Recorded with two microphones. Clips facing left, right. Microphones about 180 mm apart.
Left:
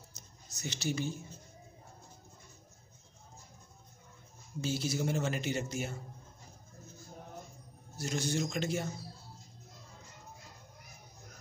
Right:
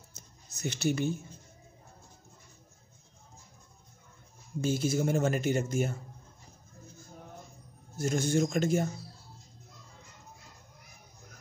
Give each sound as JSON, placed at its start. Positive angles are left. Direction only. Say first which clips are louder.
{"t": 0.1, "sound": "music", "louder": "right 1 dB", "side_deg": -55}
{"t": 4.6, "sound": "a man's voice", "louder": "right 5 dB", "side_deg": -50}
{"t": 8.0, "sound": "a man's voice", "louder": "right 6 dB", "side_deg": -50}